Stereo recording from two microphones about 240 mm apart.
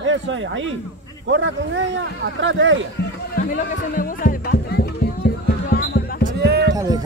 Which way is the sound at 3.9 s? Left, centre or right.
Left.